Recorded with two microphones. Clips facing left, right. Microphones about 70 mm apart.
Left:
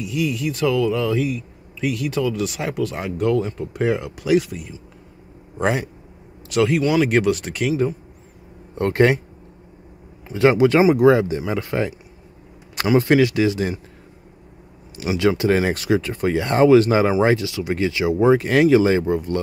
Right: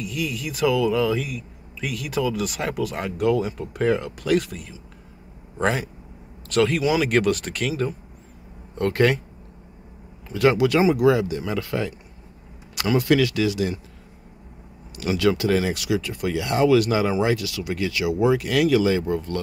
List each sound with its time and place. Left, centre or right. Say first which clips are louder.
0.0 s speech: left 5 dB; centre
8.7 s speech: left 3 dB; left
10.3 s speech: left 4 dB; left
15.0 s speech: left 2 dB; left
15.6 s speech: left 4 dB; left
19.1 s speech: left 4 dB; left